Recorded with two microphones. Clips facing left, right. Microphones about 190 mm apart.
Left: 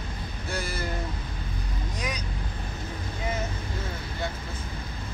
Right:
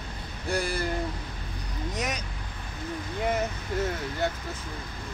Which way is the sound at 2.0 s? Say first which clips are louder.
Right 2 dB; 45° right (ahead or behind).